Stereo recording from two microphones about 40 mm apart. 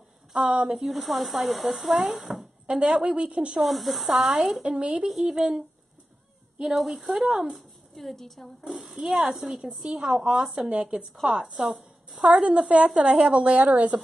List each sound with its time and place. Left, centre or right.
0.5 s speech: right
0.8 s speech: centre
2.6 s speech: right
3.6 s speech: centre
4.6 s speech: right
5.1 s speech: centre
6.6 s speech: centre
7.5 s speech: centre
8.8 s speech: centre
10.7 s speech: right
12.4 s speech: right